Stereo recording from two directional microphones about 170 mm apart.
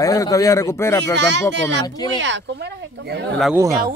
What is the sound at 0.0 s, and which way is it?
A man's voice, 20° left (ahead or behind).